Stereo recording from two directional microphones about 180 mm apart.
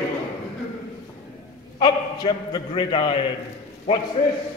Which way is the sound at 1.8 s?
20° left (ahead or behind).